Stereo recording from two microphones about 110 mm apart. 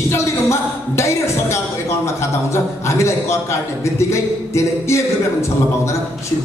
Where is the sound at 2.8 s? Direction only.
25° left (ahead or behind).